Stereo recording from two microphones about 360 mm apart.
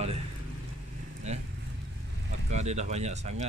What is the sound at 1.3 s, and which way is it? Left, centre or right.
Speech, centre.